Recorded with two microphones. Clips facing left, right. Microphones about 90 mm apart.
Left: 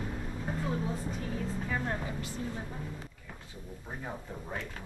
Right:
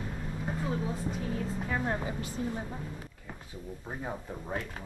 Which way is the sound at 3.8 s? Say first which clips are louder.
Right 2 dB; 10° right (ahead or behind).